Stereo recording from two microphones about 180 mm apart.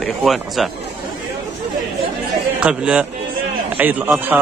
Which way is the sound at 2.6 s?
5° right (ahead or behind).